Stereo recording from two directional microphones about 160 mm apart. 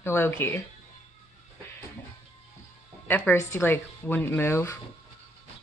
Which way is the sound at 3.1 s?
10° left (ahead or behind).